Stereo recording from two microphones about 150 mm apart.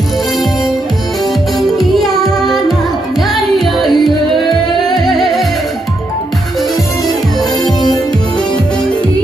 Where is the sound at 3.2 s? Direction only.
Centre (ahead or behind).